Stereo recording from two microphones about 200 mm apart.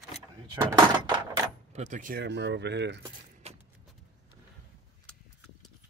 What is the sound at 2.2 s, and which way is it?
Speech, 60° right (ahead or behind).